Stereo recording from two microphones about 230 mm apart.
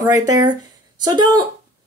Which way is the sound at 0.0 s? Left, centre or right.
Centre.